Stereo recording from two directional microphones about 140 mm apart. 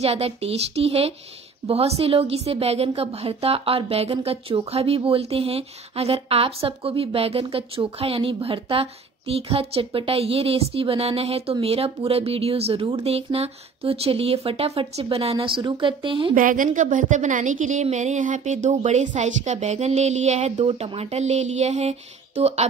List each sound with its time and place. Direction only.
0.0 s a woman's voice: 45° right (ahead or behind)
16.3 s a woman's voice: 75° right (ahead or behind); by 22.7 s 50° right (ahead or behind)